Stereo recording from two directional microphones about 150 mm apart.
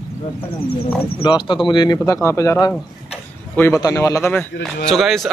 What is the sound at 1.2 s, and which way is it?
Speech, 30° left (ahead or behind).